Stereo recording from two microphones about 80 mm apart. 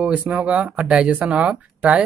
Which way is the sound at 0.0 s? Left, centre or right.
Centre.